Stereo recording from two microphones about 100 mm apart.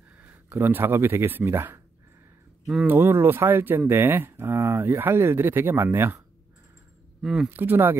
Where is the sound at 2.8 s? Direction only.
20° right (ahead or behind).